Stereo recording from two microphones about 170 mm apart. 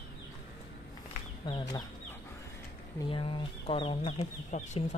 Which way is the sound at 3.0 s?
30° left (ahead or behind).